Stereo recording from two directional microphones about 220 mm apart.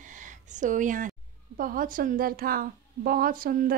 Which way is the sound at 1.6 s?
40° right (ahead or behind).